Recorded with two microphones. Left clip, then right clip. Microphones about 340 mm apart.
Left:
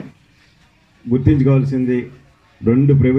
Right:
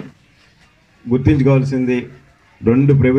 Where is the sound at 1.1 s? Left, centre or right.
Right.